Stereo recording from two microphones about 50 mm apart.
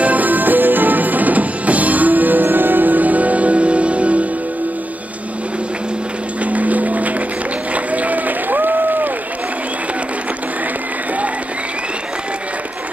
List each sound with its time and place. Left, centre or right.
0.0 s music: right
6.4 s music: right
7.7 s applause: right